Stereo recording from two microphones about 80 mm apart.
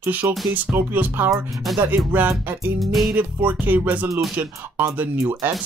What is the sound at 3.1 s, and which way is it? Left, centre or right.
Speech, centre.